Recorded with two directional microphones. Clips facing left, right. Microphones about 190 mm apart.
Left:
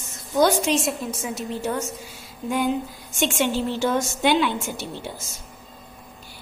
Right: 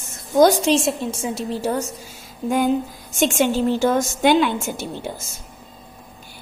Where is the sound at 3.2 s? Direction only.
45° right (ahead or behind).